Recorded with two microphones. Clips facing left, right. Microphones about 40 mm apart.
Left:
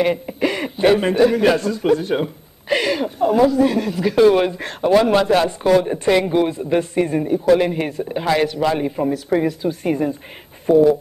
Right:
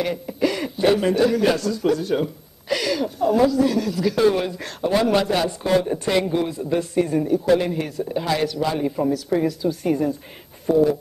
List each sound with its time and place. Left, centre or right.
0.0 s a man's voice: left